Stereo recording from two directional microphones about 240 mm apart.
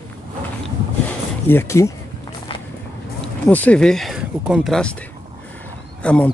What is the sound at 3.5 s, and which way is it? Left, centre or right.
Speech, centre.